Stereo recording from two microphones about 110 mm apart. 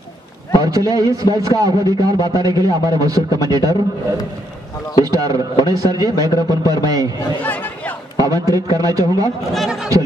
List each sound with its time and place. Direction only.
0.6 s a man's voice: 35° right (ahead or behind)
5.0 s a man's voice: 35° right (ahead or behind)
7.4 s chatter: 15° left (ahead or behind)
8.2 s a man's voice: 35° right (ahead or behind)
9.5 s speech: centre (ahead or behind)